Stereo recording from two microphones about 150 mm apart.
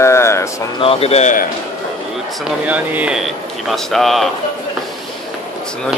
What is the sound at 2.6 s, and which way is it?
Speech, 10° right (ahead or behind).